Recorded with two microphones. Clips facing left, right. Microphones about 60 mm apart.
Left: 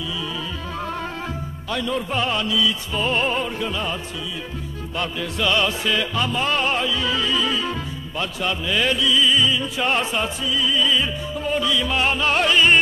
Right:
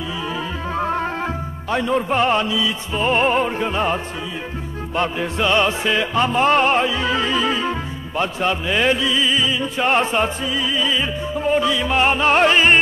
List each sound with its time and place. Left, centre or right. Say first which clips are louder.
0.7 s music: right 8 dB; right